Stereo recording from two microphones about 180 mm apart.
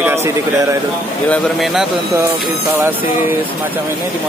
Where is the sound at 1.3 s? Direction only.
Centre (ahead or behind).